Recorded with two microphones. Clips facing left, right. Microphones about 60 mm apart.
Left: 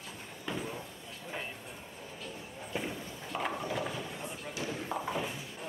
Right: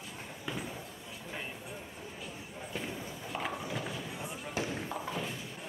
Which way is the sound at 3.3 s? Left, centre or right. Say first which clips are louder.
Left 3 dB; centre.